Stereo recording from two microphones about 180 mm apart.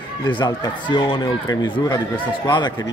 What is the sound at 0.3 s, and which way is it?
Speech, 25° left (ahead or behind).